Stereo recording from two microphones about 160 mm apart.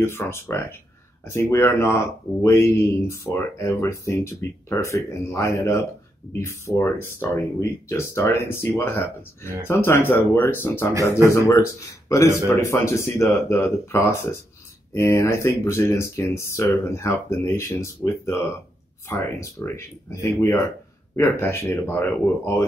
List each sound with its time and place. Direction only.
0.0 s speech: 15° left (ahead or behind)